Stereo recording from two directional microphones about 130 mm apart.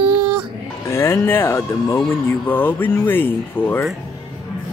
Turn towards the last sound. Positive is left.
turn(degrees=15)  # may be behind; listen again after turning